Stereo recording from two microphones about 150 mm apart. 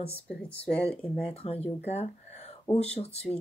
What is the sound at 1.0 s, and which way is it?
Speech, 40° left (ahead or behind).